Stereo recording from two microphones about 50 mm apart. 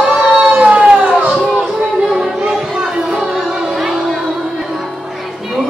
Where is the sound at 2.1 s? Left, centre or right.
Centre.